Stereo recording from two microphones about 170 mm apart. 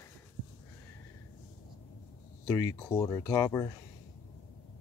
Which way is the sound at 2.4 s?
20° left (ahead or behind).